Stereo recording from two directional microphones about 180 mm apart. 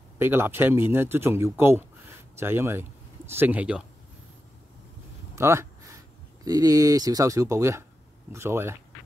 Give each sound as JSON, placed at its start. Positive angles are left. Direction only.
{"t": 0.2, "sound": "speech", "side_deg": -15}
{"t": 5.3, "sound": "speech", "side_deg": -15}